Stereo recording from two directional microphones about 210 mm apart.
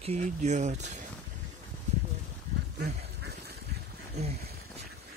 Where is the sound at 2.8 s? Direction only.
50° right (ahead or behind).